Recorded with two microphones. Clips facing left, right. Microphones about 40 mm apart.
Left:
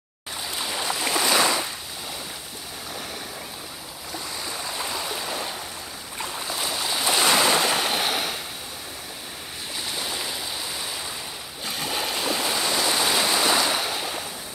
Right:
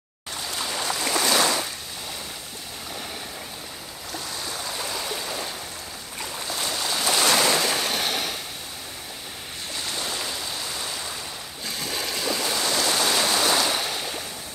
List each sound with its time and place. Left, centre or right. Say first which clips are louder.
0.5 s boat: even; centre
4.1 s stream: even; centre
6.4 s waves: right 1 dB; centre
9.8 s stream: even; centre
11.6 s stream: left 2 dB; left